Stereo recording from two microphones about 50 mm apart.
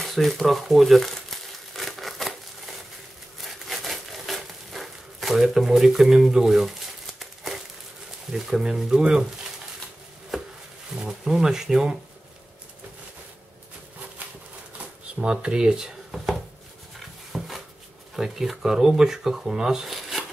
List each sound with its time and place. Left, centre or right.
0.0 s crumpling: centre
8.3 s speech: centre
11.0 s speech: centre
15.1 s speech: centre
17.3 s a sound: centre
18.1 s speech: centre